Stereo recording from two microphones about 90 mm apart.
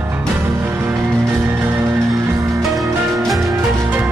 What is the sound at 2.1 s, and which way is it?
Music, 35° right (ahead or behind).